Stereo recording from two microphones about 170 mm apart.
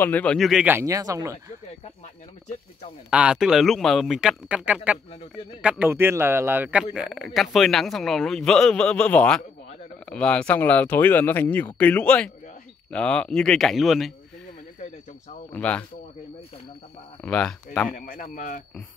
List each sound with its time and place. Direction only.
0.0 s a man's voice: 10° left (ahead or behind)
0.7 s speech: 20° right (ahead or behind)
3.1 s a man's voice: 5° right (ahead or behind)
15.5 s speech: 10° left (ahead or behind)
17.2 s a man's voice: 5° left (ahead or behind)
17.9 s speech: 55° left (ahead or behind)